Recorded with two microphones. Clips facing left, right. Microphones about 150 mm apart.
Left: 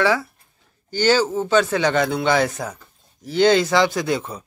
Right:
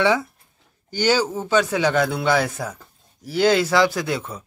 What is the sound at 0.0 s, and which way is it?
Speech, 20° right (ahead or behind).